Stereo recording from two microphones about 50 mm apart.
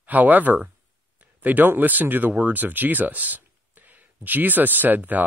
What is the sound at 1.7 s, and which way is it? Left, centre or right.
Speech, right.